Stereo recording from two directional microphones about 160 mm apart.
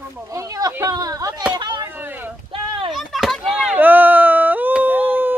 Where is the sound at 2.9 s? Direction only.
Centre (ahead or behind).